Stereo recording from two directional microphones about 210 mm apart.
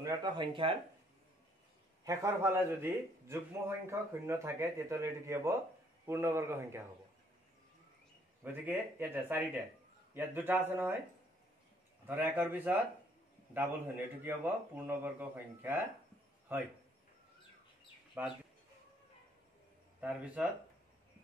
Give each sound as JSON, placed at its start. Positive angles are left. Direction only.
{"t": 0.0, "sound": "speech", "side_deg": -20}
{"t": 2.0, "sound": "a man's voice", "side_deg": -15}
{"t": 8.6, "sound": "a man's voice", "side_deg": -10}
{"t": 12.1, "sound": "a man's voice", "side_deg": -10}
{"t": 18.2, "sound": "a man's voice", "side_deg": -10}
{"t": 20.0, "sound": "a man's voice", "side_deg": -5}